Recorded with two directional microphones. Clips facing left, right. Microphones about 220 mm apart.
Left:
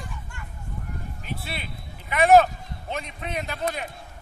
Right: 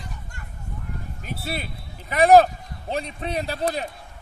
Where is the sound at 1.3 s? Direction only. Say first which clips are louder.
Right 5 dB; 40° right (ahead or behind).